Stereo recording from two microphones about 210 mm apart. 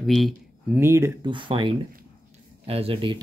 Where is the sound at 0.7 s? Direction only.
10° right (ahead or behind).